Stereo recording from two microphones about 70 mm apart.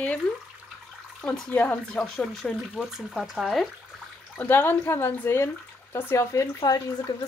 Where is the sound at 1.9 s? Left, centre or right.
Centre.